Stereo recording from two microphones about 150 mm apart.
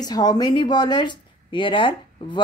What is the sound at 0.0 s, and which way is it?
Speech, 25° left (ahead or behind).